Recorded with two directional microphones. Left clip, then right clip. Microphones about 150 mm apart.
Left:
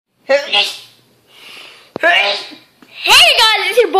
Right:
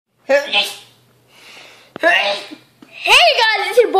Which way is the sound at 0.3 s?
20° right (ahead or behind).